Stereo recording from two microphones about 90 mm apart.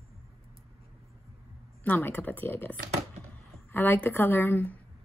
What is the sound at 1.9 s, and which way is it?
A woman's voice, 25° left (ahead or behind).